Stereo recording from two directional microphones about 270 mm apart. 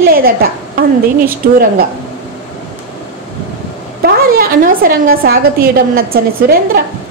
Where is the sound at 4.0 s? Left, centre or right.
Right.